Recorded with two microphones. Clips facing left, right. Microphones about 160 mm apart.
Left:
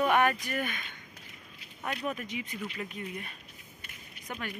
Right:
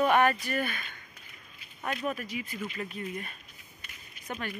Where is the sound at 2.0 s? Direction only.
20° left (ahead or behind).